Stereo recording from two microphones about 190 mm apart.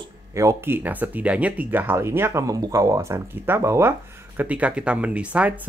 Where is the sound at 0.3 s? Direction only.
15° right (ahead or behind).